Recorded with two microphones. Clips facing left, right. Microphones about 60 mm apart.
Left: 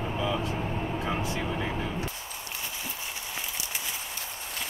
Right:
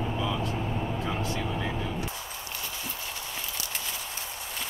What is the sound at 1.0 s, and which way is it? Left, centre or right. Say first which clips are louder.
Vehicle: left 1 dB; centre.